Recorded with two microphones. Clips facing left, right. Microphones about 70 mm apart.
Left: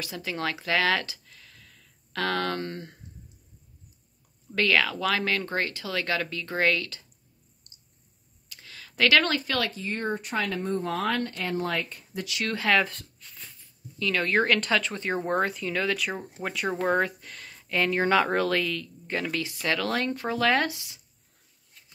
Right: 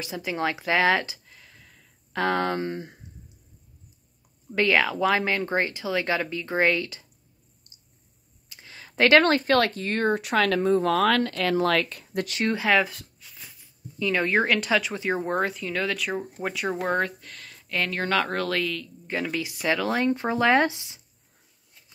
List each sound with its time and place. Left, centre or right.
0.0 s speech: right
4.6 s speech: right
8.5 s a sound: right
9.4 s speech: right
12.4 s speech: centre
14.4 s speech: centre
19.4 s speech: centre